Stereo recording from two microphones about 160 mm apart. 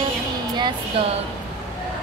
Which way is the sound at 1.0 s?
35° right (ahead or behind).